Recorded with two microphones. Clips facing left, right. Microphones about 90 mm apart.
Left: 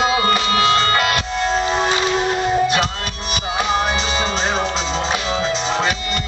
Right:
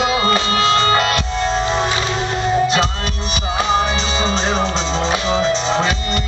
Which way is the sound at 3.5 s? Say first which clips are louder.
Right 2 dB; centre (ahead or behind).